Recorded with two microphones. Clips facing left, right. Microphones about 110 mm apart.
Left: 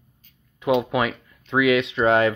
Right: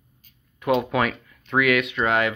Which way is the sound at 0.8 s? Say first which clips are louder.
Even; 15° left (ahead or behind).